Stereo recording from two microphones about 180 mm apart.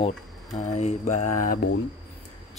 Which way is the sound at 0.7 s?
40° left (ahead or behind).